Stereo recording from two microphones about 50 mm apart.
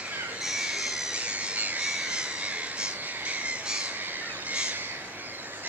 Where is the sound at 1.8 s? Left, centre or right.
Centre.